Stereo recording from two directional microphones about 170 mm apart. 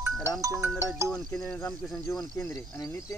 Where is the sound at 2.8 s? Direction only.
15° left (ahead or behind).